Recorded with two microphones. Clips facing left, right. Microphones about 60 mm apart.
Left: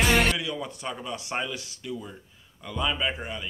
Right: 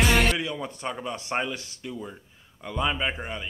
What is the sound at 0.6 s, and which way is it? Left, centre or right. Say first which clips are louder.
Speech: right 1 dB; right.